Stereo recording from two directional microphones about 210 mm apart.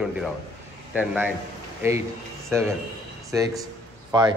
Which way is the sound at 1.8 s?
15° right (ahead or behind).